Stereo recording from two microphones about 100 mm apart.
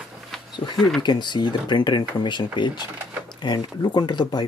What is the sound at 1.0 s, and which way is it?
Speech, 50° left (ahead or behind).